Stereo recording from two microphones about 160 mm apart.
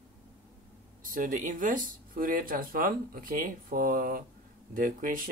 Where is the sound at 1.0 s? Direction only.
60° right (ahead or behind).